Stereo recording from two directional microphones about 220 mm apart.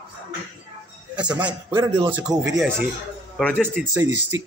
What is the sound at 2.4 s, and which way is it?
Speech, 10° right (ahead or behind).